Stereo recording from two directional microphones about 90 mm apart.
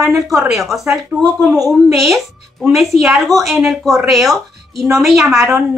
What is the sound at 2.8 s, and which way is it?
A woman's voice, centre (ahead or behind).